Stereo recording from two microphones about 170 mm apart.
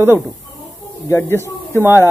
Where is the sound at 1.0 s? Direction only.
15° left (ahead or behind).